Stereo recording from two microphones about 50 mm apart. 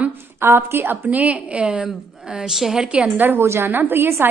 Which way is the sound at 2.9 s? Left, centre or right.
Right.